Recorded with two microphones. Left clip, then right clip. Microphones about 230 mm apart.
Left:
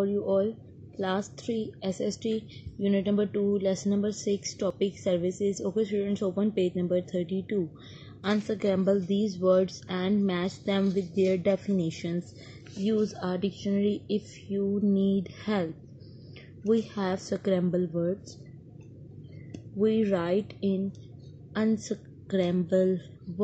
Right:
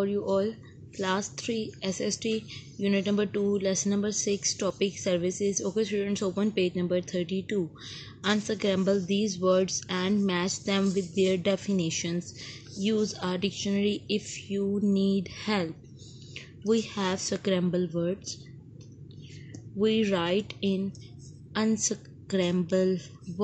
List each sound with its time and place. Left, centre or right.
0.0 s a woman's voice: centre
9.1 s speech: centre
9.4 s a woman's voice: centre
19.8 s a woman's voice: centre